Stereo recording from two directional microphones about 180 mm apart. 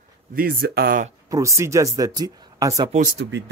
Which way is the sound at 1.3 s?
15° right (ahead or behind).